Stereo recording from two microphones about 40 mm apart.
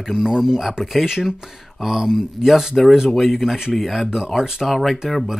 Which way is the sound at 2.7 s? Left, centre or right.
Centre.